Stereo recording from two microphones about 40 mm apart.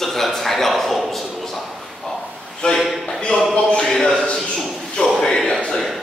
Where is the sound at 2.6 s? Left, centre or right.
Left.